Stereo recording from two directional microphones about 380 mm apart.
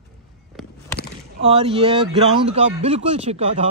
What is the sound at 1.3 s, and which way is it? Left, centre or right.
A man's voice, centre.